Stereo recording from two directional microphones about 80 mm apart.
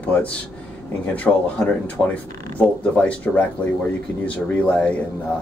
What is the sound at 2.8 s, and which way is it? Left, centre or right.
Speech, centre.